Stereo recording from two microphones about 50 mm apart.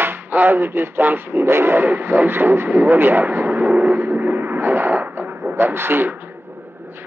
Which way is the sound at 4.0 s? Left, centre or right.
Right.